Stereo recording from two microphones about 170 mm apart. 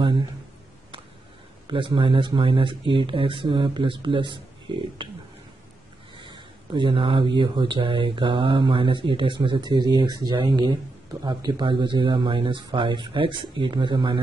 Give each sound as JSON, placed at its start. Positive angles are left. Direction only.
{"t": 1.7, "sound": "speech", "side_deg": -30}
{"t": 6.1, "sound": "speech", "side_deg": -25}